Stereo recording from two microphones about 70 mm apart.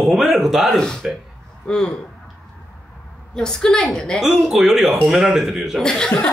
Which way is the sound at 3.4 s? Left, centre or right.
Centre.